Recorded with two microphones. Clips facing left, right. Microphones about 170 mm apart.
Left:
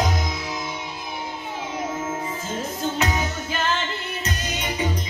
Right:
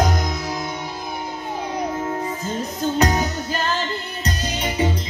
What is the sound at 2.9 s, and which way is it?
Music, 40° right (ahead or behind).